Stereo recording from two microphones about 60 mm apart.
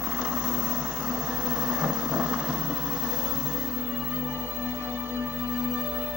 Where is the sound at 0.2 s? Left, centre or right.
Centre.